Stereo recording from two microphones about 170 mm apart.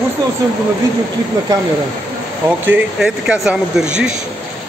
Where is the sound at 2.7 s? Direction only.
5° right (ahead or behind).